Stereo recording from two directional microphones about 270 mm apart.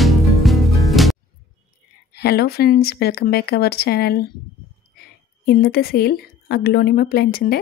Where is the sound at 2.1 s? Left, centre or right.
Left.